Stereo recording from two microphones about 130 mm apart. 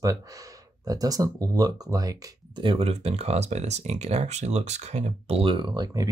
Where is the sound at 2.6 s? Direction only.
45° right (ahead or behind).